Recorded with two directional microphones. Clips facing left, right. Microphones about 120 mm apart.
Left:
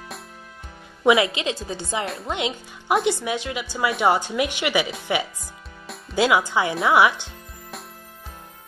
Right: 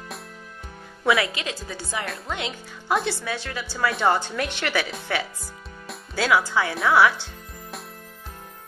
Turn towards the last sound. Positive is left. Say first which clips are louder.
# left 1 dB
turn(degrees=20)  # may be behind; listen again after turning